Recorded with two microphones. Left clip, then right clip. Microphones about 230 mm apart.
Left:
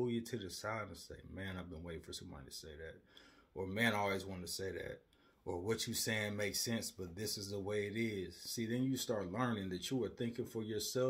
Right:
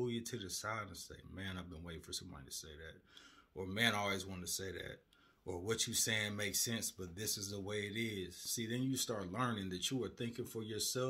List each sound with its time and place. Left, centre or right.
0.0 s speech: centre